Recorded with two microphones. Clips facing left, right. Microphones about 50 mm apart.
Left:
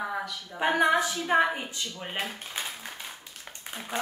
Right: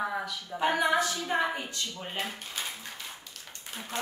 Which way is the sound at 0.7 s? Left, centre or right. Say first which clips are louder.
Left 5 dB; centre.